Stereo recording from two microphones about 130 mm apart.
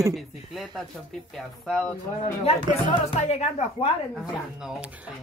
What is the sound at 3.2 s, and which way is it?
Speech, 55° left (ahead or behind).